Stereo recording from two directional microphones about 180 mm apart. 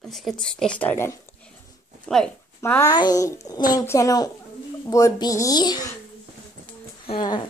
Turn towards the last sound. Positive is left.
turn(degrees=25)  # may be behind; listen again after turning